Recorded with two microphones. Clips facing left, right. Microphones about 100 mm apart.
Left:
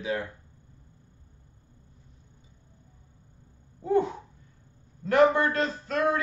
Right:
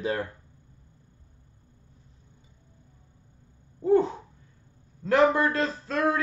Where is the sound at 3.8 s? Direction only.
30° right (ahead or behind).